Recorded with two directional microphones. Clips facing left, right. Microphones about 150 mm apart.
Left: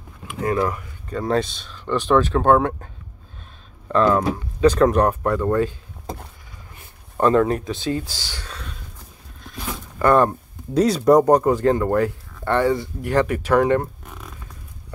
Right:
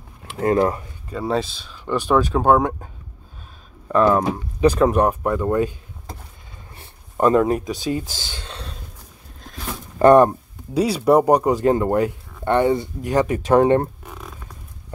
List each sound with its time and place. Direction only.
0.3 s speech: 35° right (ahead or behind)
1.1 s speech: 5° right (ahead or behind)
3.9 s speech: 15° right (ahead or behind)
7.2 s speech: 10° right (ahead or behind)
8.1 s a sound: 20° right (ahead or behind)
9.9 s speech: 20° right (ahead or behind)
10.7 s speech: 5° right (ahead or behind); by 13.8 s 25° right (ahead or behind)